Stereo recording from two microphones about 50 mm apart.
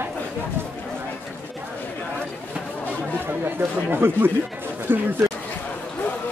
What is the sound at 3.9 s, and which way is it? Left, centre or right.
Speech, right.